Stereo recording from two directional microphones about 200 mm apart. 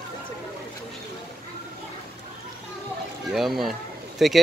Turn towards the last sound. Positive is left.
turn(degrees=0)  # may be behind; listen again after turning